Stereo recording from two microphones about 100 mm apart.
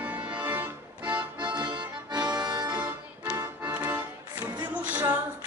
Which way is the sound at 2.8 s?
20° right (ahead or behind).